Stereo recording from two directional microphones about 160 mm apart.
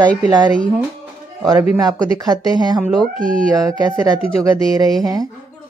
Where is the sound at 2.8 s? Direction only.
Centre (ahead or behind).